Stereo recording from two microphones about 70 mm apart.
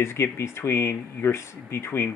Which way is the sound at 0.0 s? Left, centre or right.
Left.